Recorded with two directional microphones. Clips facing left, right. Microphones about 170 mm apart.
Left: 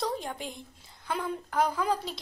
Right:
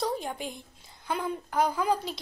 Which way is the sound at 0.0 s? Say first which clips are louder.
Right 2 dB; 5° right (ahead or behind).